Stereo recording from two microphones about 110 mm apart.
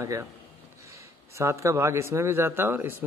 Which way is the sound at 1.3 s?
25° right (ahead or behind).